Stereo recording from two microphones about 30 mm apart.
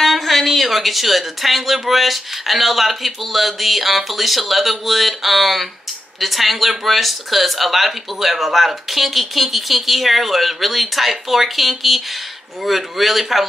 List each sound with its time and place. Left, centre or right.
0.0 s speech: centre